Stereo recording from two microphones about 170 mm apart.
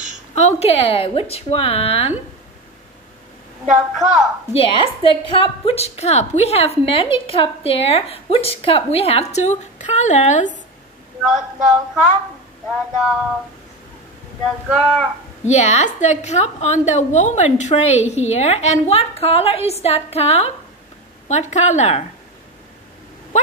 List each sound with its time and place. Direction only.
0.3 s a woman's voice: 40° left (ahead or behind)
3.6 s a woman's voice: 5° right (ahead or behind)
4.6 s a woman's voice: 30° left (ahead or behind)
11.2 s a sound: 5° right (ahead or behind)
15.4 s a woman's voice: 40° left (ahead or behind)
23.3 s a sound: 45° left (ahead or behind)